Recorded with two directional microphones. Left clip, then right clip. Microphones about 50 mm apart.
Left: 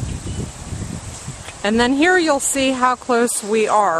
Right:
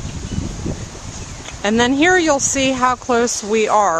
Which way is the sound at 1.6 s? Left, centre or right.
Centre.